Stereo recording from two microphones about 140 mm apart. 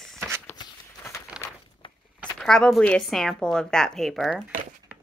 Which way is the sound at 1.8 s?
35° left (ahead or behind).